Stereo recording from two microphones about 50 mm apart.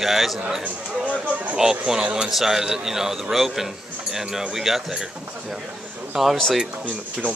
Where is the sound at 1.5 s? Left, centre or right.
Centre.